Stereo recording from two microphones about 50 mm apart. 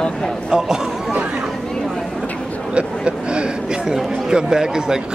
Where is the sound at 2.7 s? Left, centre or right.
Right.